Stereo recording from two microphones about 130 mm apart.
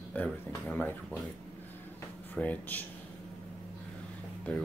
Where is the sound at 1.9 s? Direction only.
15° left (ahead or behind).